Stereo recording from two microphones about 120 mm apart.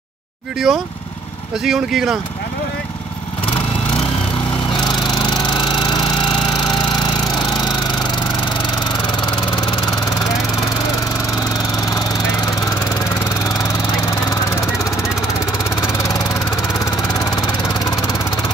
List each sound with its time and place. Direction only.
0.7 s speech: centre (ahead or behind)
5.0 s lawn mower: 40° left (ahead or behind)
17.0 s vehicle: 35° left (ahead or behind)